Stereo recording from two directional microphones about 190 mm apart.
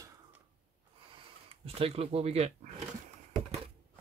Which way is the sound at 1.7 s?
30° right (ahead or behind).